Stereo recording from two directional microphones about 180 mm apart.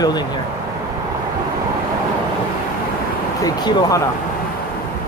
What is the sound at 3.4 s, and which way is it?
Speech, 20° left (ahead or behind).